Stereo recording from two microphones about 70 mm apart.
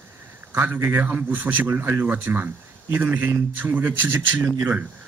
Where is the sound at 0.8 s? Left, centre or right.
Right.